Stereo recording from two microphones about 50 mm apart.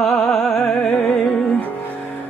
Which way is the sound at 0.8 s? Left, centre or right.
Left.